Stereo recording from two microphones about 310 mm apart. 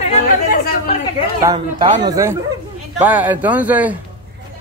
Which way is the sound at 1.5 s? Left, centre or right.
Centre.